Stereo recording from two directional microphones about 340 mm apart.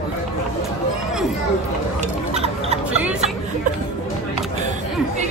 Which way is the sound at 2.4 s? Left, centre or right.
Centre.